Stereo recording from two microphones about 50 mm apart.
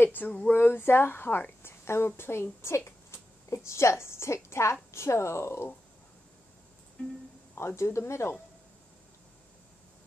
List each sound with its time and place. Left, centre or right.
0.0 s a sound: left
0.5 s speech: left
7.5 s speech: left